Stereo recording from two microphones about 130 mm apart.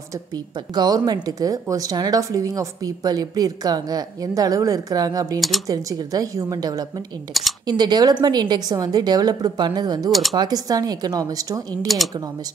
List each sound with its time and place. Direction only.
0.1 s a woman's voice: 30° right (ahead or behind)